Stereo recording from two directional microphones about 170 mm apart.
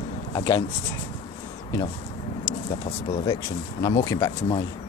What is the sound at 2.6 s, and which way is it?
Speech, 30° left (ahead or behind).